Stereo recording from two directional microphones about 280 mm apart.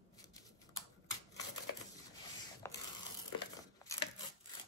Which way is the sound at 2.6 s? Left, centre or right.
Centre.